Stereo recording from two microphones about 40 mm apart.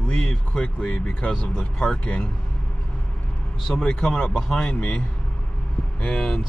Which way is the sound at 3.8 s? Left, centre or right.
Left.